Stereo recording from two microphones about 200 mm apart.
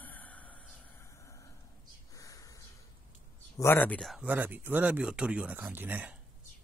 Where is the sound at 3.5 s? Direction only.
10° left (ahead or behind); by 6.1 s 10° right (ahead or behind).